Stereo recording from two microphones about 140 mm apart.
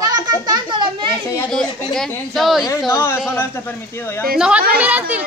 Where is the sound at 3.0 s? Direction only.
15° left (ahead or behind).